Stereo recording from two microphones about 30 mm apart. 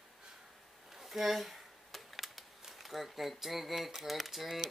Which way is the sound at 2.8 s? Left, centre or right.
Centre.